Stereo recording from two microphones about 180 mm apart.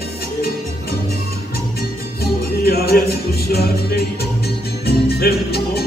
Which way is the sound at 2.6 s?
60° left (ahead or behind).